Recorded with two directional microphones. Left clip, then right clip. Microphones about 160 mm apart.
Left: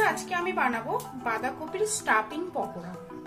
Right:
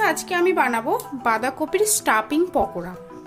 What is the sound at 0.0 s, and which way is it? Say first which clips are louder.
A woman's voice: right 6 dB; 90° right.